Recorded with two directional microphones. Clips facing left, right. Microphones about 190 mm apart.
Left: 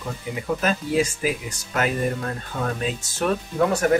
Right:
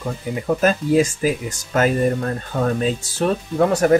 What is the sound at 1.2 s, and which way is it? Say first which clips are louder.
Speech: right 5 dB; 40° right (ahead or behind).